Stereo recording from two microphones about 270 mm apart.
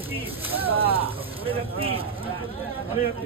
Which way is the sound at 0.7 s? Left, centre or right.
Right.